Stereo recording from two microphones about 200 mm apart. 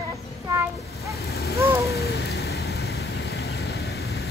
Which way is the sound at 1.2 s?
50° left (ahead or behind).